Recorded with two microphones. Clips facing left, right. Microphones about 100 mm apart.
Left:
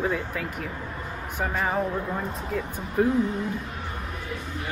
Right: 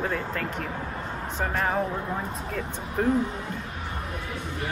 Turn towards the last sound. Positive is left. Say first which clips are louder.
# left 2 dB
turn(degrees=5)  # may be behind; listen again after turning